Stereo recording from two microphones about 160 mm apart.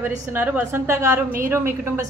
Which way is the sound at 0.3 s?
10° right (ahead or behind).